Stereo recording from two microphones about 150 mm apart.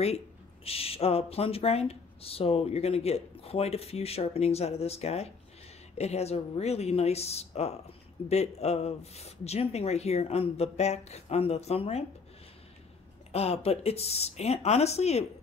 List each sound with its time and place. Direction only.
0.7 s speech: 40° left (ahead or behind)
13.3 s speech: 45° left (ahead or behind)